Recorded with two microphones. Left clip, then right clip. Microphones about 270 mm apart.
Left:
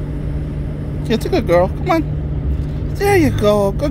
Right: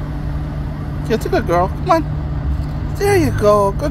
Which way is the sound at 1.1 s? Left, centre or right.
Left.